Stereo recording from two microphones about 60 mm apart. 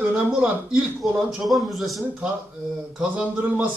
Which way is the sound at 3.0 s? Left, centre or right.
Right.